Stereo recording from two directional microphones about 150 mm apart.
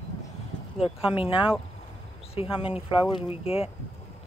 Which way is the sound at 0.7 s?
40° left (ahead or behind).